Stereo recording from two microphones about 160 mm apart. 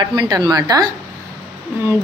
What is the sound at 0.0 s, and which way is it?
Speech, 25° right (ahead or behind).